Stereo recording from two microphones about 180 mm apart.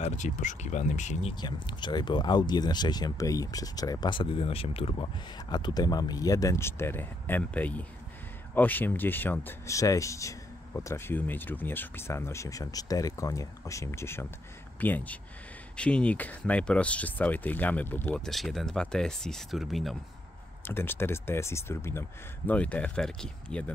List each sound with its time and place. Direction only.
0.0 s speech: 40° left (ahead or behind)
1.3 s speech: 25° left (ahead or behind); by 20.0 s centre (ahead or behind)
20.6 s speech: 10° left (ahead or behind)